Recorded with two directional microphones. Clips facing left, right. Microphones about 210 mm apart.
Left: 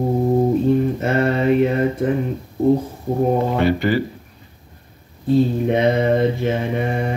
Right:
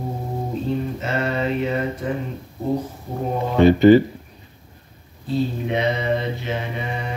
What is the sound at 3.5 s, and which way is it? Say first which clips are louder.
Speech: right 6 dB; 20° right (ahead or behind).